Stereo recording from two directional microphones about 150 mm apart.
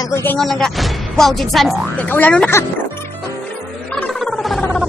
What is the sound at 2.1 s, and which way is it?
Speech, 10° left (ahead or behind).